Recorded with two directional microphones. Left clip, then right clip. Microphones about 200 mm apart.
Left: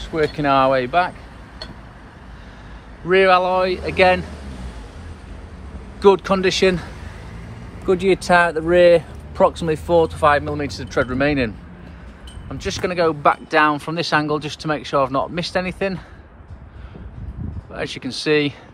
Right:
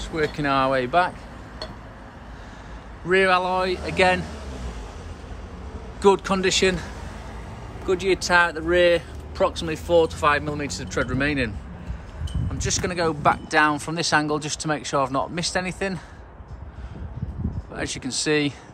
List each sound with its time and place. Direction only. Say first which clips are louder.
0.0 s speech: left 5 dB; centre (ahead or behind)
3.1 s speech: left 5 dB; centre (ahead or behind)
5.9 s speech: left 4 dB; 5° right (ahead or behind)
7.8 s speech: left 5 dB; 20° left (ahead or behind)
12.5 s speech: left 5 dB; centre (ahead or behind)
17.7 s speech: left 2 dB; 5° right (ahead or behind)